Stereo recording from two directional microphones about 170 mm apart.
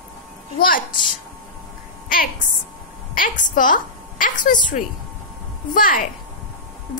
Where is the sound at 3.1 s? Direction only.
55° left (ahead or behind).